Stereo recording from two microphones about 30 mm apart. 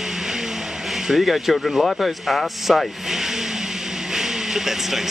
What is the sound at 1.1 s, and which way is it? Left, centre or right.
Speech, centre.